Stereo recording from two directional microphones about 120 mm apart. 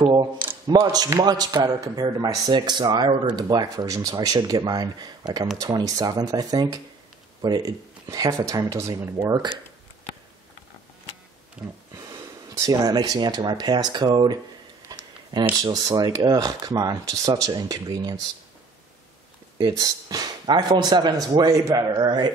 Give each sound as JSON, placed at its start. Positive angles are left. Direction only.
{"t": 0.0, "sound": "speech", "side_deg": -35}
{"t": 11.6, "sound": "a sound", "side_deg": -10}
{"t": 11.9, "sound": "speech", "side_deg": -25}
{"t": 14.9, "sound": "a sound", "side_deg": -35}
{"t": 15.5, "sound": "speech", "side_deg": -30}
{"t": 19.6, "sound": "speech", "side_deg": -30}
{"t": 21.9, "sound": "speech", "side_deg": -40}